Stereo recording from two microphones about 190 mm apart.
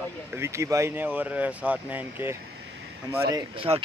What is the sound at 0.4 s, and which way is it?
Speech, 15° right (ahead or behind).